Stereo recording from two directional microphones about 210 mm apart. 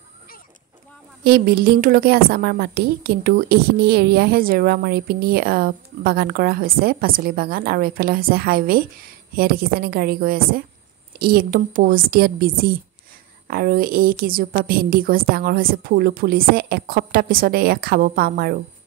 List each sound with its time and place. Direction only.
1.2 s a woman's voice: 45° right (ahead or behind)